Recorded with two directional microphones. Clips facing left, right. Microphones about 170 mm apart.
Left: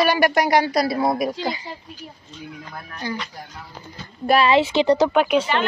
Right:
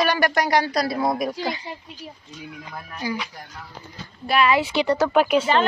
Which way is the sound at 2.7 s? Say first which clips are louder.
Right 1 dB; 5° right (ahead or behind).